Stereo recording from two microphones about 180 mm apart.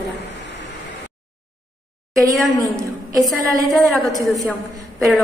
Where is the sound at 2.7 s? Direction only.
Centre (ahead or behind).